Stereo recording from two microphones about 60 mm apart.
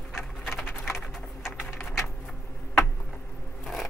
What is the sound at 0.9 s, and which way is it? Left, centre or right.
Typing, centre.